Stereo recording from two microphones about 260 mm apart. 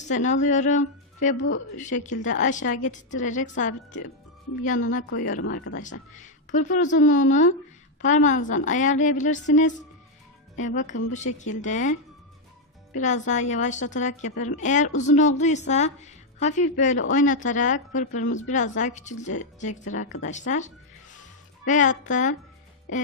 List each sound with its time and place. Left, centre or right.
0.1 s a woman's voice: left
5.5 s speech: left
5.8 s a woman's voice: left